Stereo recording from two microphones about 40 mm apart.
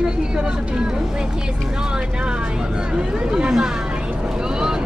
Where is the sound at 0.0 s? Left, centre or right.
Right.